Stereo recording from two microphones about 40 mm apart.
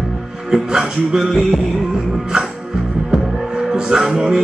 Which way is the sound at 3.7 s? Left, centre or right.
Centre.